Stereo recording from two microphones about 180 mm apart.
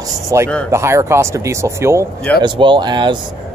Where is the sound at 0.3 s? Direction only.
15° right (ahead or behind).